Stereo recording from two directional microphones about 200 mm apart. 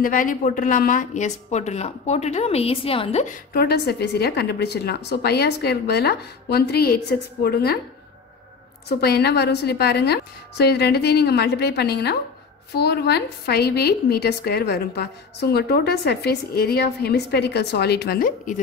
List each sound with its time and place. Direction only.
0.0 s a woman's voice: 45° left (ahead or behind)
3.5 s a woman's voice: 55° left (ahead or behind)
8.8 s a woman's voice: 55° left (ahead or behind)